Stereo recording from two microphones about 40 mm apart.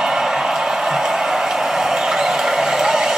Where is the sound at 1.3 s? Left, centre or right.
Centre.